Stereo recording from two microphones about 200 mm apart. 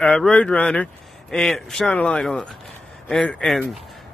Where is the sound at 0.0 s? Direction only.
5° left (ahead or behind).